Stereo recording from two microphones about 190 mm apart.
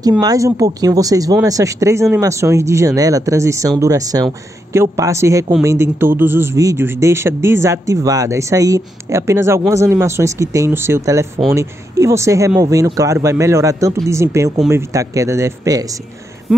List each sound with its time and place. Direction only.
0.2 s a man's voice: 20° right (ahead or behind)